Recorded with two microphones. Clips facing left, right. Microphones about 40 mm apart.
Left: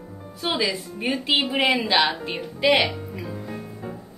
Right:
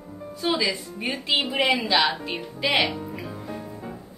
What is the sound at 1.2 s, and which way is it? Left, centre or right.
Speech, left.